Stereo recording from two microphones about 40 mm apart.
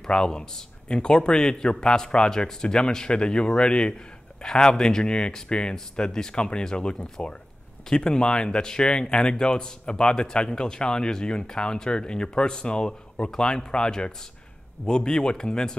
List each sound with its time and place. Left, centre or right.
0.0 s a man's voice: centre